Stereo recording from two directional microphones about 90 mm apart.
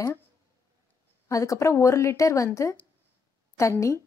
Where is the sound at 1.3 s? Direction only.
35° left (ahead or behind).